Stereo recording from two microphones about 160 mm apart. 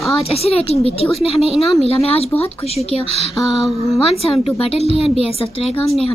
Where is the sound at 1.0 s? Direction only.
Centre (ahead or behind).